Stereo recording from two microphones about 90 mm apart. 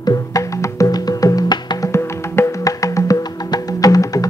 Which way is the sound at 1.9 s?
35° left (ahead or behind).